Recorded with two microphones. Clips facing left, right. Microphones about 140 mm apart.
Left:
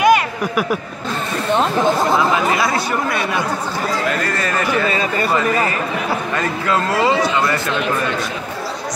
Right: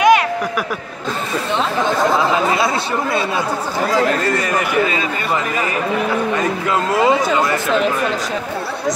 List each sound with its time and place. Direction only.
0.0 s a sound: centre (ahead or behind)
2.5 s speech: 25° right (ahead or behind)
4.4 s speech: 15° right (ahead or behind)
6.3 s speech: 20° right (ahead or behind)